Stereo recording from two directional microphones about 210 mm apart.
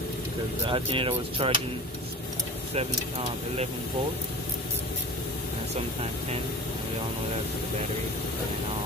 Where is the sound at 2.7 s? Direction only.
30° right (ahead or behind).